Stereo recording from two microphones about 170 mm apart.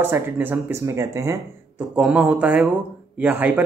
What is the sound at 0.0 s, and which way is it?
Speech, 10° right (ahead or behind).